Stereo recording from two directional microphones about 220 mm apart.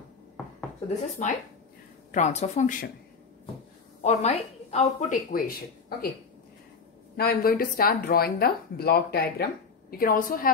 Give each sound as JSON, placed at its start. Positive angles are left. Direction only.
{"t": 1.2, "sound": "speech", "side_deg": 35}
{"t": 4.0, "sound": "speech", "side_deg": 30}
{"t": 5.9, "sound": "speech", "side_deg": 45}
{"t": 7.2, "sound": "speech", "side_deg": 40}